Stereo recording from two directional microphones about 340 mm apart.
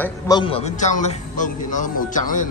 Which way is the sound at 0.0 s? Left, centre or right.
Centre.